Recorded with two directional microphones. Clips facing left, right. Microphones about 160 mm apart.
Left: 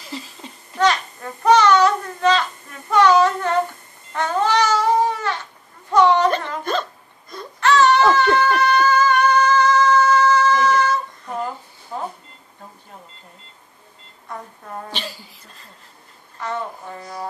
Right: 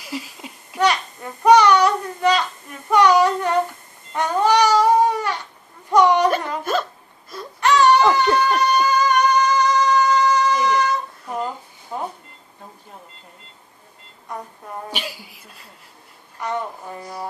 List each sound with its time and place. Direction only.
0.0 s babbling: 10° right (ahead or behind)
2.9 s child singing: 15° right (ahead or behind)
4.1 s babbling: 15° right (ahead or behind)
5.9 s hiccup: 15° right (ahead or behind)
7.6 s a sound: 15° right (ahead or behind)
14.3 s a sound: 15° right (ahead or behind)